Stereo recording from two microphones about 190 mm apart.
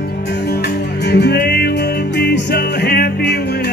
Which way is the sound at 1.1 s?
60° left (ahead or behind).